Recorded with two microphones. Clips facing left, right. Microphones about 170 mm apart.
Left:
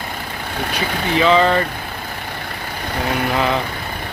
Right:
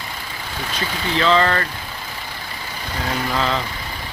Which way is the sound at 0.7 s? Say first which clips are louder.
Left 3 dB; 60° left (ahead or behind).